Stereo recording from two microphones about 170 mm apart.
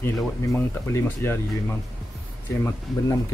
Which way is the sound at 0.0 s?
15° left (ahead or behind).